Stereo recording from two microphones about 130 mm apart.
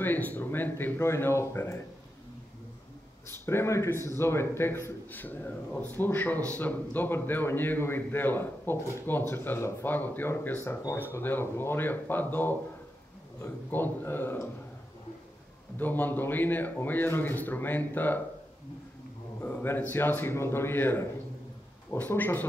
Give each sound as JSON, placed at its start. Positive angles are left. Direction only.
{"t": 0.0, "sound": "a man's voice", "side_deg": 15}
{"t": 3.3, "sound": "a man's voice", "side_deg": 20}
{"t": 15.8, "sound": "a man's voice", "side_deg": 15}
{"t": 19.4, "sound": "a man's voice", "side_deg": 15}